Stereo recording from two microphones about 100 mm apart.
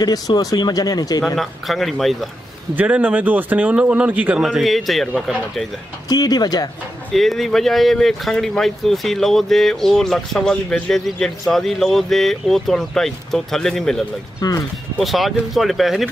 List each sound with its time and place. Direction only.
0.0 s speech: 40° left (ahead or behind)
1.2 s speech: centre (ahead or behind)
2.7 s a man's voice: 15° right (ahead or behind)
4.4 s speech: centre (ahead or behind)
6.0 s speech: 40° left (ahead or behind)
7.1 s speech: centre (ahead or behind)